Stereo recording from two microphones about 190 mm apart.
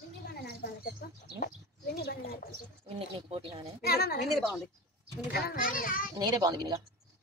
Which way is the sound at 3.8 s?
55° left (ahead or behind).